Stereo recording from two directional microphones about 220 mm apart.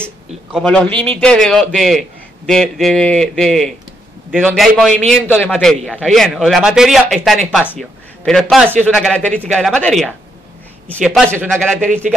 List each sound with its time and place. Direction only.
0.0 s a man's voice: centre (ahead or behind)
11.1 s a man's voice: 10° right (ahead or behind)
11.5 s a man's voice: centre (ahead or behind)